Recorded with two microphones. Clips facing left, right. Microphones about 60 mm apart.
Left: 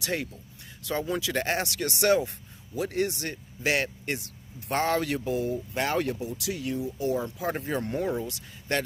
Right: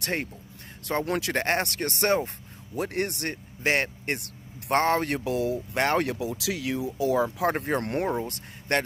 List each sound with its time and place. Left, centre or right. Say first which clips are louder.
0.0 s speech: right 1 dB; right
1.0 s speech: right 1 dB; right
2.7 s speech: left 1 dB; right
3.6 s speech: right 2 dB; right
4.8 s speech: left 1 dB; right
5.1 s speech: right 2 dB; right
5.8 s speech: right 3 dB; right
7.5 s speech: right 3 dB; right
7.8 s speech: right 2 dB; right
8.1 s speech: right 2 dB; right